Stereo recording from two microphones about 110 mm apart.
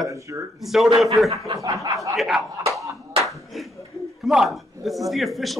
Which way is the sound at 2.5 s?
30° right (ahead or behind).